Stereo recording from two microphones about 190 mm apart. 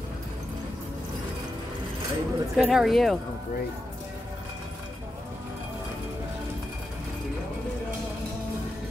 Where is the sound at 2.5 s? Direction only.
Centre (ahead or behind).